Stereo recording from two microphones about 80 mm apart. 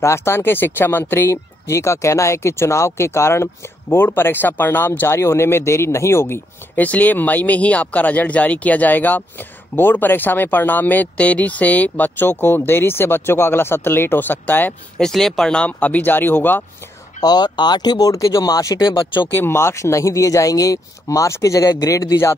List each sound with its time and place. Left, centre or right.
0.0 s speech: left
6.7 s speech: centre
15.0 s speech: centre; by 16.6 s left
17.2 s speech: left
18.8 s speech: left
19.3 s speech: left